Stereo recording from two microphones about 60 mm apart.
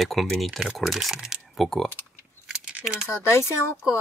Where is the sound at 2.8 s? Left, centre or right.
Centre.